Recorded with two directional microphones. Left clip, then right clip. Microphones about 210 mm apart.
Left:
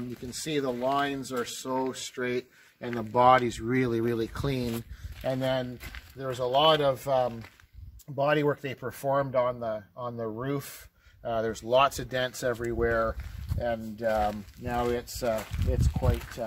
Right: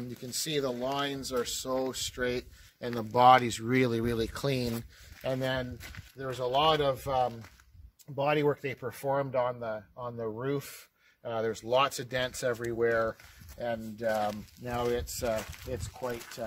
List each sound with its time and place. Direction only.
0.3 s speech: 55° right (ahead or behind)
5.2 s speech: 30° right (ahead or behind)
6.2 s speech: 15° right (ahead or behind)